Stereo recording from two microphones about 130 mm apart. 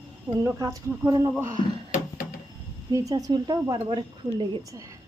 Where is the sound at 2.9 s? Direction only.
25° right (ahead or behind).